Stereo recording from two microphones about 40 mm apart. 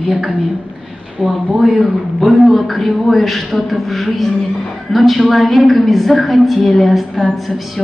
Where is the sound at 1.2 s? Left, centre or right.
Right.